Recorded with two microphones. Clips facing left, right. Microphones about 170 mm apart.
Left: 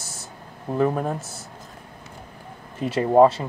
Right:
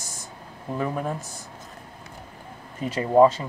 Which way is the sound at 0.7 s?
35° left (ahead or behind).